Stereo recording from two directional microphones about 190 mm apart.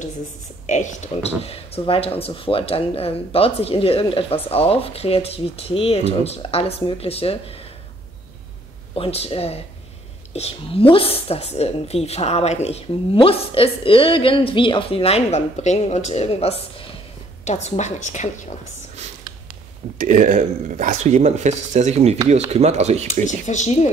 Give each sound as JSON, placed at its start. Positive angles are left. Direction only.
{"t": 0.7, "sound": "speech", "side_deg": 40}
{"t": 8.9, "sound": "speech", "side_deg": 30}
{"t": 20.0, "sound": "speech", "side_deg": -40}
{"t": 23.2, "sound": "speech", "side_deg": 40}